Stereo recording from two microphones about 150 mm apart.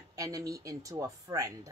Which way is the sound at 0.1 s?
20° right (ahead or behind).